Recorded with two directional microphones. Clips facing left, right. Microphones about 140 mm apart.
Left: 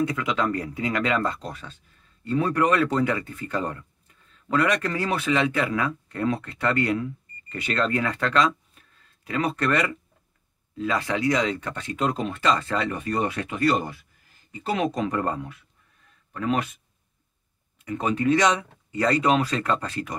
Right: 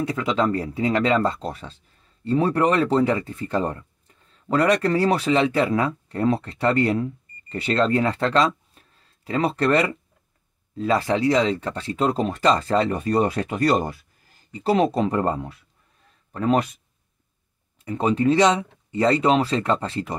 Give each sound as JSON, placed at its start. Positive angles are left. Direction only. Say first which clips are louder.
{"t": 0.0, "sound": "speech", "louder": "right 2 dB", "side_deg": -30}
{"t": 17.8, "sound": "speech", "louder": "right 3 dB", "side_deg": -30}